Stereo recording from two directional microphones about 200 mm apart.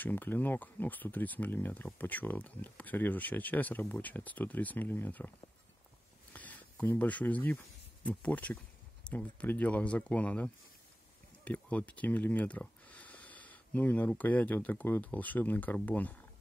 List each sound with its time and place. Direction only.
0.0 s speech: 10° left (ahead or behind)
6.3 s speech: 5° left (ahead or behind)